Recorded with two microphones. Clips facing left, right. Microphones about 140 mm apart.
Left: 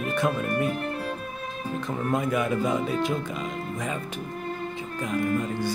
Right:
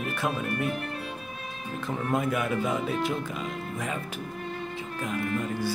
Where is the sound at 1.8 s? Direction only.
5° right (ahead or behind).